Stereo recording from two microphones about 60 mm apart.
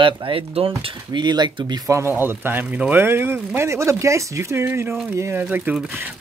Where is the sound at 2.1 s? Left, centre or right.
Right.